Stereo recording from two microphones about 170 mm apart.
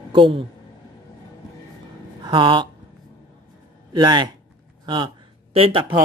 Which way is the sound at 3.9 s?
25° right (ahead or behind).